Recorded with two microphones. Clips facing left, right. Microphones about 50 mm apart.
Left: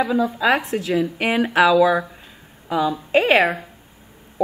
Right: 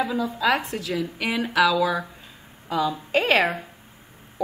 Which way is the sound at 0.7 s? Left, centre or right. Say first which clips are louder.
Left 7 dB; left.